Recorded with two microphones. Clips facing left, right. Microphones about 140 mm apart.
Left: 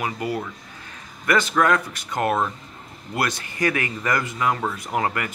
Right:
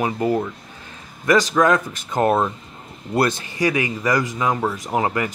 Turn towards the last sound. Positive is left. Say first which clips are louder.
# right 3 dB
turn(degrees=-20)  # may be behind; listen again after turning